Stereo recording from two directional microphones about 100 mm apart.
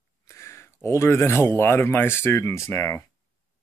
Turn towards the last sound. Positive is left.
turn(degrees=25)  # may be behind; listen again after turning